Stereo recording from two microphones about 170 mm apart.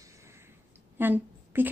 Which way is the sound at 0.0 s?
15° right (ahead or behind).